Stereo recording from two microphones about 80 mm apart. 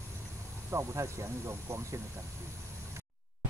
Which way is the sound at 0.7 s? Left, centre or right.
Right.